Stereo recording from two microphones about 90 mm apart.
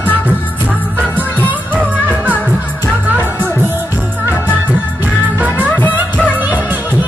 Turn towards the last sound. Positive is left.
turn(degrees=-15)  # may be behind; listen again after turning